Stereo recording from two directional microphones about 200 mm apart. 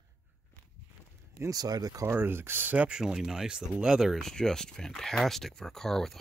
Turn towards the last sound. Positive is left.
turn(degrees=0)  # may be behind; listen again after turning